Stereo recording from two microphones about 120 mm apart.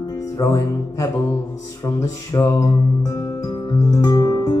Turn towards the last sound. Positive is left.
turn(degrees=35)  # may be behind; listen again after turning